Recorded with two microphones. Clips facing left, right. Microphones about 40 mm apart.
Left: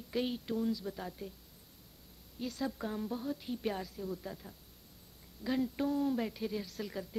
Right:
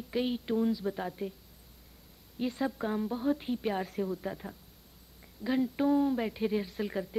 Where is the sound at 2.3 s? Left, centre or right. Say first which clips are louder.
Right 5 dB; right.